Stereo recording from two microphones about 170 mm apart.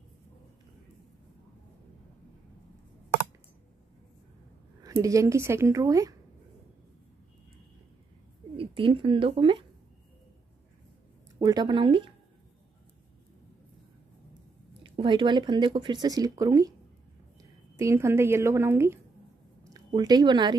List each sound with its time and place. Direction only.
4.8 s speech: 20° right (ahead or behind)
8.5 s speech: 30° right (ahead or behind)
11.3 s speech: 25° right (ahead or behind)
14.8 s a woman's voice: 30° right (ahead or behind)